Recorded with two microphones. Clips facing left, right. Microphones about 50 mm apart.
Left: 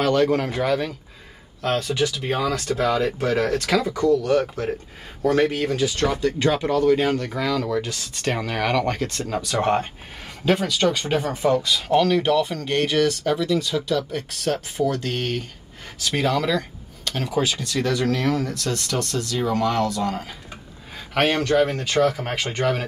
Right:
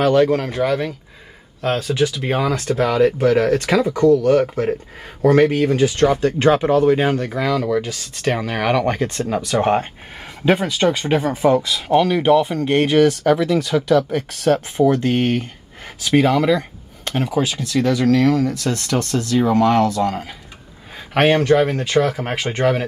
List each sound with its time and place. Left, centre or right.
0.0 s speech: centre; by 2.8 s right
2.8 s speech: right
5.2 s speech: right
5.6 s speech: right
6.6 s speech: right
17.3 s speech: centre
18.7 s speech: right
19.9 s speech: centre; by 22.8 s right